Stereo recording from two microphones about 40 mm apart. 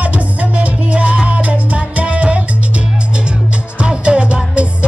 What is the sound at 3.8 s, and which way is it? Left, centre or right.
Music, right.